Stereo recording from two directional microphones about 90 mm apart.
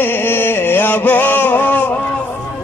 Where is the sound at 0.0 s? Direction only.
25° left (ahead or behind).